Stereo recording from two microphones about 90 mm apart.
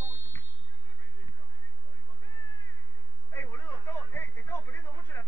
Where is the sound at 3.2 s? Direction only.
20° left (ahead or behind).